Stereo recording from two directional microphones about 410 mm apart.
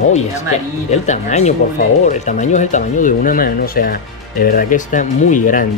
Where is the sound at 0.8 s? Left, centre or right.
Centre.